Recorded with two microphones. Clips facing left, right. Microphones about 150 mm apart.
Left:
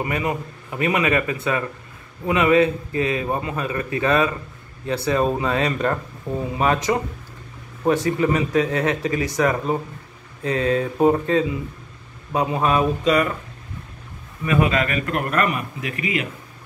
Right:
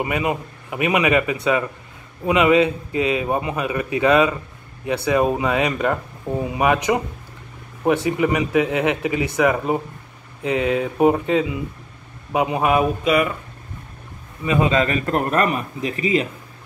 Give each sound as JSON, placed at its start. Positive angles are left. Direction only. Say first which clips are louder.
{"t": 0.0, "sound": "a man's voice", "louder": "right 2 dB", "side_deg": -20}
{"t": 14.4, "sound": "speech", "louder": "right 1 dB", "side_deg": -20}